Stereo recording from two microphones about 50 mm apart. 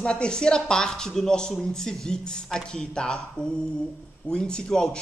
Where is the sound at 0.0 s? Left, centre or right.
Centre.